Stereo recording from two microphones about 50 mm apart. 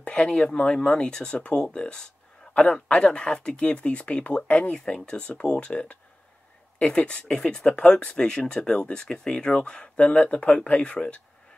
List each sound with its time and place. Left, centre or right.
0.0 s a sound: left
0.3 s speech: centre
7.1 s speech: centre
7.7 s speech: left